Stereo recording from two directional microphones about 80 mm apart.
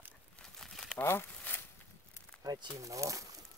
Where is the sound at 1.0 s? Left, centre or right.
Left.